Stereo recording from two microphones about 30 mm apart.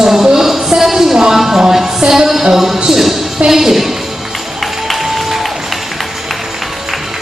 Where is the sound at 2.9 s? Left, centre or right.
Centre.